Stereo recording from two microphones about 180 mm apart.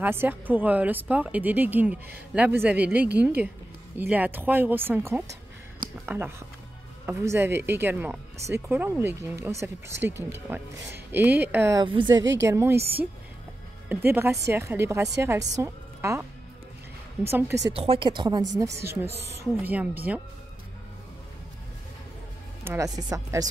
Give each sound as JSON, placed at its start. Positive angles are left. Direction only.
{"t": 0.0, "sound": "speech", "side_deg": -10}
{"t": 11.8, "sound": "speech", "side_deg": -25}
{"t": 12.4, "sound": "speech", "side_deg": -15}
{"t": 13.8, "sound": "a woman's voice", "side_deg": -10}
{"t": 17.3, "sound": "speech", "side_deg": -15}
{"t": 17.7, "sound": "speech", "side_deg": -30}
{"t": 22.6, "sound": "speech", "side_deg": -15}